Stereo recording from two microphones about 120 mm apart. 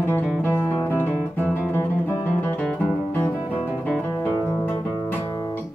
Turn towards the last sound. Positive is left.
turn(degrees=10)  # may be behind; listen again after turning